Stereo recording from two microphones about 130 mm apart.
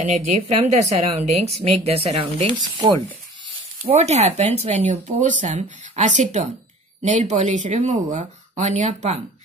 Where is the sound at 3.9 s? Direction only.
60° right (ahead or behind).